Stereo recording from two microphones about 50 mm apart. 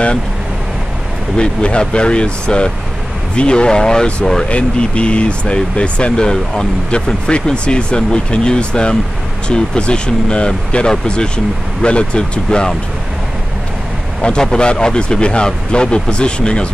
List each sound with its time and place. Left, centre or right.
1.3 s speech: left
4.5 s speech: left
14.2 s speech: centre